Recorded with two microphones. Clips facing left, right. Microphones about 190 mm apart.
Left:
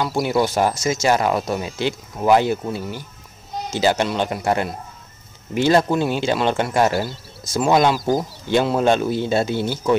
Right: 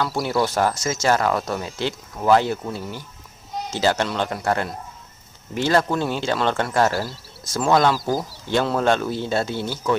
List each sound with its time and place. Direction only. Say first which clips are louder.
0.0 s speech: left 2 dB; 20° left (ahead or behind)
8.0 s speech: left 4 dB; centre (ahead or behind)
8.5 s speech: left 3 dB; 15° left (ahead or behind)